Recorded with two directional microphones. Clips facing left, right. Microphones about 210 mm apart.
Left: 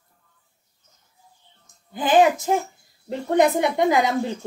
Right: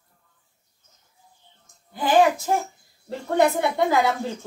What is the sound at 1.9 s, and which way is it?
Speech, 20° left (ahead or behind).